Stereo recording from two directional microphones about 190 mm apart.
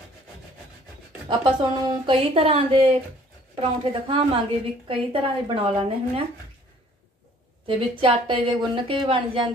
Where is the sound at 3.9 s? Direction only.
25° right (ahead or behind).